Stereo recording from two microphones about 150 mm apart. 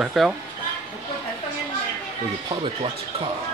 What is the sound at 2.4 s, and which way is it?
Speech, 35° right (ahead or behind).